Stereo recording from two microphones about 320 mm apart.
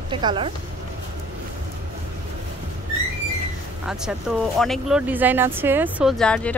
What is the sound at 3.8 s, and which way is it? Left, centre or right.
Speech, centre.